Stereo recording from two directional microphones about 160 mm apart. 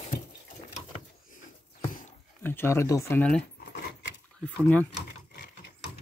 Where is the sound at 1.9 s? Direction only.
55° left (ahead or behind).